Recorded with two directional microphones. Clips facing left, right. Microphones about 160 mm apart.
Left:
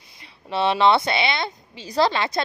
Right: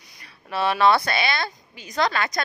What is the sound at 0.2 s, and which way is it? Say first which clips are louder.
A woman's voice: left 2 dB; 25° left (ahead or behind).